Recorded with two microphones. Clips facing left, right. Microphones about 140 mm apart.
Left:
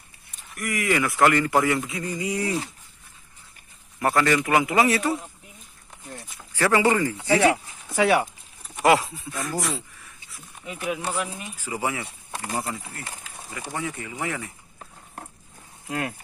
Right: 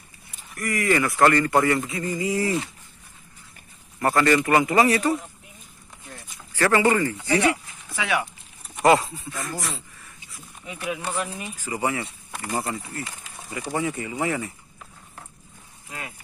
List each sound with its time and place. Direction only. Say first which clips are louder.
0.6 s speech: right 2 dB; centre (ahead or behind)
4.0 s speech: right 2 dB; centre (ahead or behind)
6.3 s speech: right 1 dB; 10° left (ahead or behind)
7.9 s speech: left 6 dB; 40° left (ahead or behind)
8.6 s speech: right 1 dB; centre (ahead or behind)
11.1 s speech: even; 10° left (ahead or behind)
13.5 s speech: right 5 dB; 15° right (ahead or behind)
15.9 s speech: left 9 dB; 60° left (ahead or behind)